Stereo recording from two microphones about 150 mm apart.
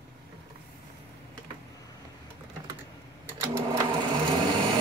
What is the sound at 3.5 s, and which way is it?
Sewing machine, 20° right (ahead or behind).